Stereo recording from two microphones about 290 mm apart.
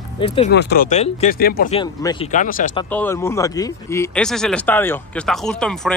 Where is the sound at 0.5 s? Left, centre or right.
Left.